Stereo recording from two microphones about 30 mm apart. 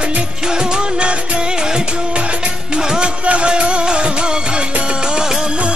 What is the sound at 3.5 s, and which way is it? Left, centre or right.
Music of bollywood, right.